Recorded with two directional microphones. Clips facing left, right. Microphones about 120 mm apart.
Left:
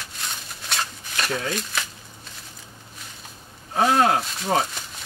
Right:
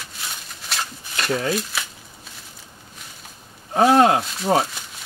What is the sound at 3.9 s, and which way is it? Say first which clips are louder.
Speech: right 5 dB; 25° right (ahead or behind).